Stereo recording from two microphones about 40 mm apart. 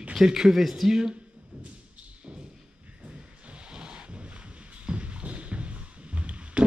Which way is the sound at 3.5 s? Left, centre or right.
Right.